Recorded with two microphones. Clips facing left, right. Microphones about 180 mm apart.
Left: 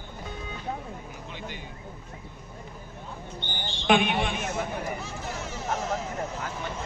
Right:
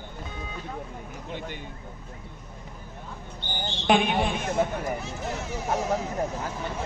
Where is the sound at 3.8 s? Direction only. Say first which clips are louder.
Right 1 dB; 35° right (ahead or behind).